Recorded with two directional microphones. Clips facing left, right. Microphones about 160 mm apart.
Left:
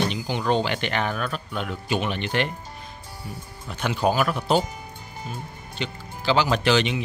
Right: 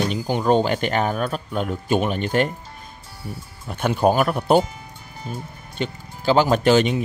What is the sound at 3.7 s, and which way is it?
Speech, 50° right (ahead or behind).